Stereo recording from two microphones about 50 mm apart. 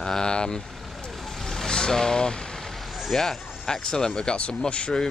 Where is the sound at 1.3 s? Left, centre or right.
Centre.